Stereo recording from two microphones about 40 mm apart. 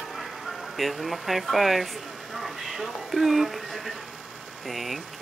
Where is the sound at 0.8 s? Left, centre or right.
Centre.